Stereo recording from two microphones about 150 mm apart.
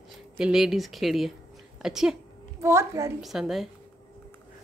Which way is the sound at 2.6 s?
20° right (ahead or behind).